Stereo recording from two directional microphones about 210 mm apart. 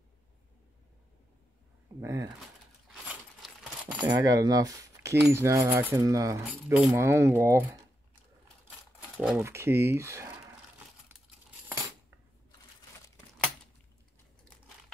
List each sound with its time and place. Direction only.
2.0 s coin: 15° right (ahead or behind)
2.9 s a sound: 5° right (ahead or behind)
4.0 s coin: 20° right (ahead or behind)
9.2 s coin: 10° right (ahead or behind)